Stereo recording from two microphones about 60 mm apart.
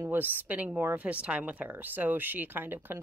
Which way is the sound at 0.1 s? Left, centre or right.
Right.